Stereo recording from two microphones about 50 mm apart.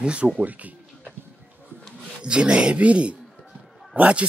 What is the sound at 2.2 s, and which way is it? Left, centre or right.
A man's voice, right.